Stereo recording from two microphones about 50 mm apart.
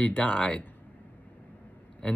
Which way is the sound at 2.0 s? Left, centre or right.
Left.